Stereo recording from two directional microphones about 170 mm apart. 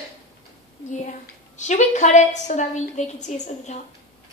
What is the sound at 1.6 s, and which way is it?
A woman's voice, 45° left (ahead or behind).